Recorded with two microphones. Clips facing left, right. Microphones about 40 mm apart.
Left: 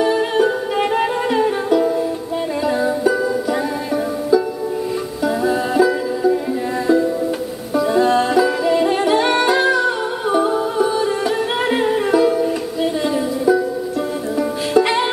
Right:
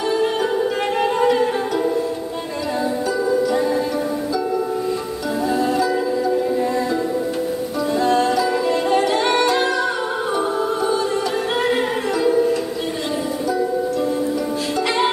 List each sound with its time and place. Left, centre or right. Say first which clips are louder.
0.0 s music: left 4 dB; centre
5.4 s music: left 3 dB; centre
7.7 s music: left 4 dB; centre
14.7 s music: left 5 dB; centre